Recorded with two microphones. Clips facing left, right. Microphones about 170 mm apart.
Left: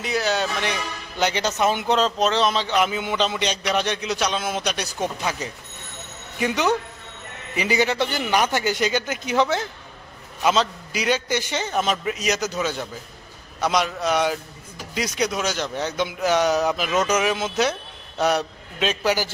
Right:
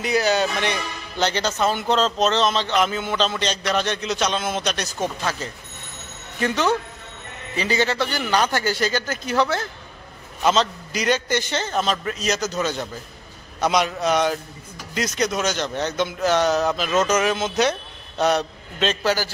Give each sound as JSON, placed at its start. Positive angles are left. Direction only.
{"t": 0.0, "sound": "a man's voice", "side_deg": 0}
{"t": 1.2, "sound": "a man's voice", "side_deg": 15}
{"t": 10.4, "sound": "a man's voice", "side_deg": 5}